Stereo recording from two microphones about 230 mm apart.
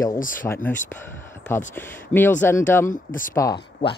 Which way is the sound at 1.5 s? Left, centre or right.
Centre.